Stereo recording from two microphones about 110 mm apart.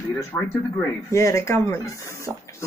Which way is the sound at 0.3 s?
25° left (ahead or behind).